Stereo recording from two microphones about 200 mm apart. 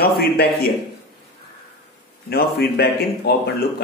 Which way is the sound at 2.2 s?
50° left (ahead or behind).